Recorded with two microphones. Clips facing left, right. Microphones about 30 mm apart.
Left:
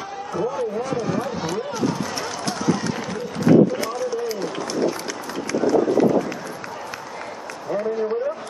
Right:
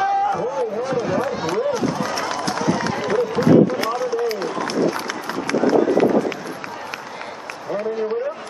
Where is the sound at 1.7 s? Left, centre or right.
Centre.